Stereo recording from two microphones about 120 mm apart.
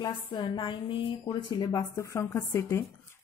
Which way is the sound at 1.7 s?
25° left (ahead or behind).